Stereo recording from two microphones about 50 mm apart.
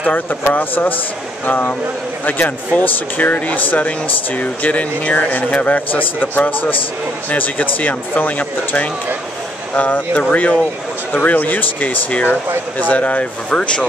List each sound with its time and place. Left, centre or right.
0.3 s speech: left; by 13.8 s centre